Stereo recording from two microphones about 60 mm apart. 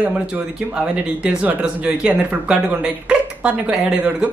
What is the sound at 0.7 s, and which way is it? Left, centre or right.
Speech, centre.